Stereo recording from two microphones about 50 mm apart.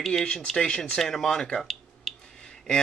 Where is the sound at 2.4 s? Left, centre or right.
Centre.